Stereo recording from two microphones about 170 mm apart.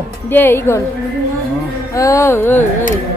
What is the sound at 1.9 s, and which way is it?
Speech, 20° left (ahead or behind).